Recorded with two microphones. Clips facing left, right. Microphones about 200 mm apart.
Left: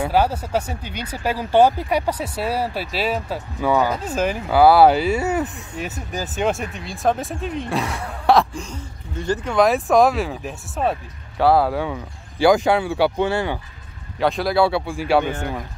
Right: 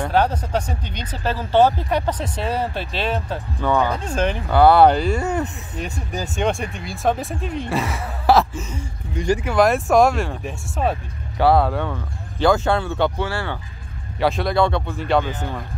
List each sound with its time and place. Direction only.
0.0 s speech: 5° left (ahead or behind); by 9.5 s 10° right (ahead or behind)
9.5 s speech: centre (ahead or behind); by 13.6 s 20° left (ahead or behind)
14.2 s speech: centre (ahead or behind)